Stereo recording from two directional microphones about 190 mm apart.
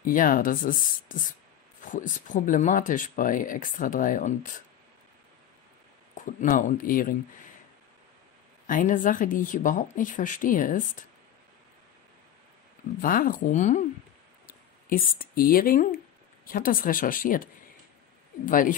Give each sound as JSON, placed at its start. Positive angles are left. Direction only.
{"t": 0.0, "sound": "speech", "side_deg": 45}
{"t": 6.1, "sound": "speech", "side_deg": 45}
{"t": 8.6, "sound": "speech", "side_deg": 45}
{"t": 13.0, "sound": "speech", "side_deg": 45}
{"t": 18.4, "sound": "speech", "side_deg": 45}